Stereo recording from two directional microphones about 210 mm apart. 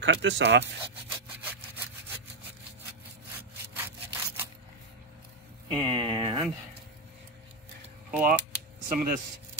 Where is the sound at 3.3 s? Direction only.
10° right (ahead or behind).